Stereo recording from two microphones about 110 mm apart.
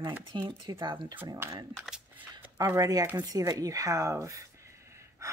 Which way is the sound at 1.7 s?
5° right (ahead or behind).